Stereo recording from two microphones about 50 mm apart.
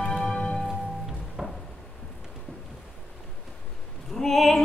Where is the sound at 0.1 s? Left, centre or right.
Centre.